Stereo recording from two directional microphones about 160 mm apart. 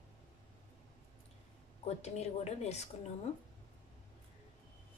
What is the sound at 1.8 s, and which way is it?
A woman's voice, 45° left (ahead or behind).